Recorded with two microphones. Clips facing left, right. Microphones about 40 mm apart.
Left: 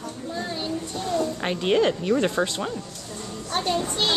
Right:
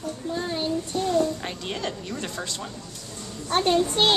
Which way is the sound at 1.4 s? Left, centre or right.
Left.